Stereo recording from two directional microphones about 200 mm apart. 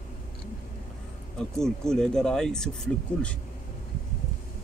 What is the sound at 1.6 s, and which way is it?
Speech, 5° left (ahead or behind).